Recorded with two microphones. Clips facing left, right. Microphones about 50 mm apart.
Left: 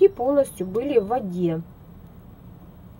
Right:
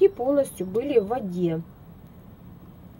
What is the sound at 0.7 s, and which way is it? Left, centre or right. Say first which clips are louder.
Speech: left 1 dB; centre.